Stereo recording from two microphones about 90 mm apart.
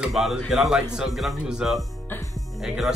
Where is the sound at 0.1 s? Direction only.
Centre (ahead or behind).